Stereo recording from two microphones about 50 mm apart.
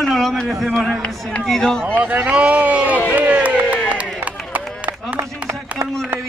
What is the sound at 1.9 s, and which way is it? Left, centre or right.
Speech, right.